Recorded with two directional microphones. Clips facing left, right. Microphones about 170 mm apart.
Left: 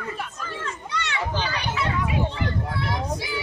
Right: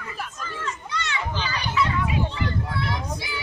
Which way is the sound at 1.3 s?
55° left (ahead or behind).